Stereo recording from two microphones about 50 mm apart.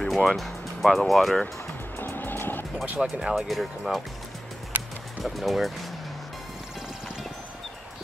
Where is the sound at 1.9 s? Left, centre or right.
Left.